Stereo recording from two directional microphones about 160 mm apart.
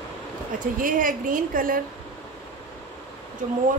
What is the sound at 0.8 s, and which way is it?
A woman's voice, 60° right (ahead or behind).